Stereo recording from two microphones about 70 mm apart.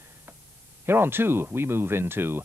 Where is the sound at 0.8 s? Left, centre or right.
Right.